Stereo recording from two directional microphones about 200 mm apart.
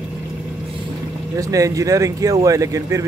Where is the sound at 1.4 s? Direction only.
15° right (ahead or behind).